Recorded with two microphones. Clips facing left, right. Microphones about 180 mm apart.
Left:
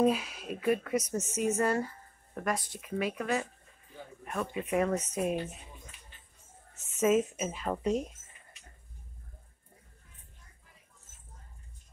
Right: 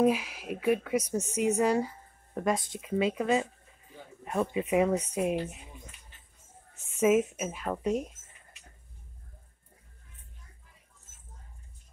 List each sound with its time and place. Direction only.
0.0 s speech: 10° right (ahead or behind)
7.0 s a woman's voice: 10° right (ahead or behind)